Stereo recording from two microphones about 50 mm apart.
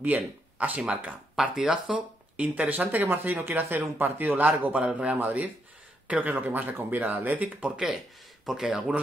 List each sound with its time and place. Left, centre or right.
0.0 s speech: right
1.3 s speech: centre
2.3 s speech: right
3.1 s speech: right
4.7 s a man's voice: right
6.3 s speech: right
8.5 s speech: centre